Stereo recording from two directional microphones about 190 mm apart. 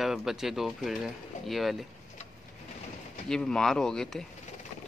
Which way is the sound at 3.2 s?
5° left (ahead or behind).